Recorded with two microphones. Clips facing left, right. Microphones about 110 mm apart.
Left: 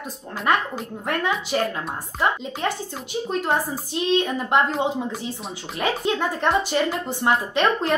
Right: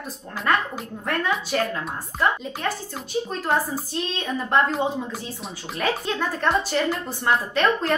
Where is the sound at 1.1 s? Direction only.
15° left (ahead or behind).